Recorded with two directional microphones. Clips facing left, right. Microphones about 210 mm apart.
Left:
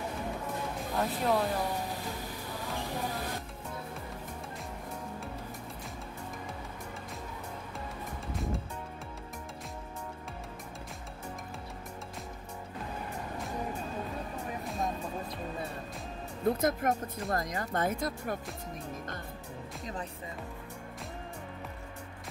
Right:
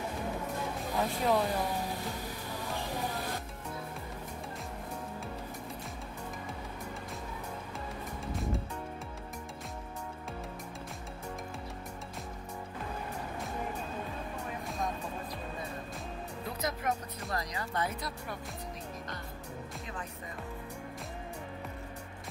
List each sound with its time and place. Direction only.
0.9 s speech: centre (ahead or behind)
16.4 s speech: 50° left (ahead or behind)